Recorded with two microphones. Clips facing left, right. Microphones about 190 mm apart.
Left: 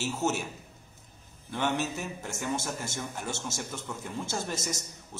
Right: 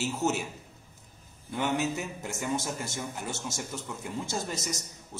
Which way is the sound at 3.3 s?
15° right (ahead or behind).